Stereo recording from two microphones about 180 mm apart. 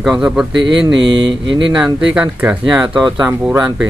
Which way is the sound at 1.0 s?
25° right (ahead or behind).